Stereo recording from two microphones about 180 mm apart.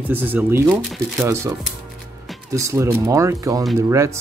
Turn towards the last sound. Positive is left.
turn(degrees=-15)  # may be behind; listen again after turning